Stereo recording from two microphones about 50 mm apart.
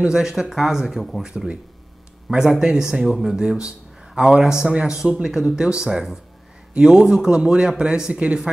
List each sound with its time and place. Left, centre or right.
0.0 s a man's voice: centre
2.2 s a man's voice: centre